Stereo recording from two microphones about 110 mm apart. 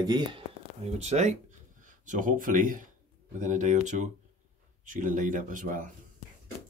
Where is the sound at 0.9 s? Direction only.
85° right.